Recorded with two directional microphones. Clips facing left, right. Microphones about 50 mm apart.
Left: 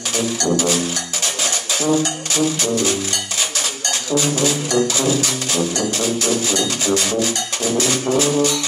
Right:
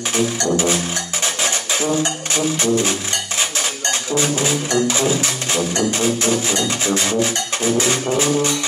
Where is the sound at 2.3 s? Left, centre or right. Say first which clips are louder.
Right 1 dB; right.